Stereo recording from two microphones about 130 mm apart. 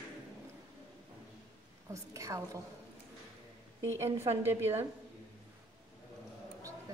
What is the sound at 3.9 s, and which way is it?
Speech, 20° right (ahead or behind).